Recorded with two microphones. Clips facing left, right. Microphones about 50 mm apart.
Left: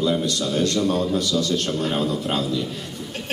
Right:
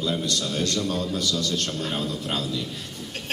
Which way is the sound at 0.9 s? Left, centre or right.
Centre.